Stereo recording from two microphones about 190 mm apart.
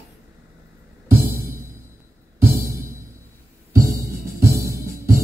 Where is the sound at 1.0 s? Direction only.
15° right (ahead or behind).